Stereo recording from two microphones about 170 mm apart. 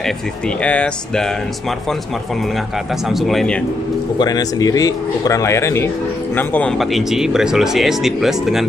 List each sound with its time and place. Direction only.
0.6 s speech: 5° left (ahead or behind)
3.1 s speech: centre (ahead or behind)
4.2 s speech: 20° left (ahead or behind)
6.8 s speech: centre (ahead or behind)